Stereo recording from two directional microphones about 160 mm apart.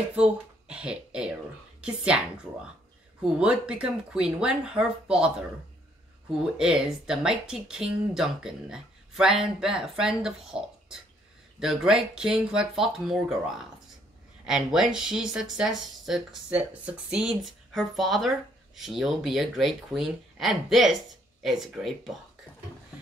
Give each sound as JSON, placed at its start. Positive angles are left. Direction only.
{"t": 0.1, "sound": "a woman's voice", "side_deg": -5}
{"t": 3.3, "sound": "speech", "side_deg": -5}
{"t": 6.6, "sound": "speech", "side_deg": -5}